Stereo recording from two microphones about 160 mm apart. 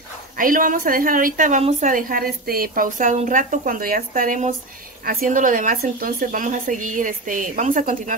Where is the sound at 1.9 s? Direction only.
60° right (ahead or behind).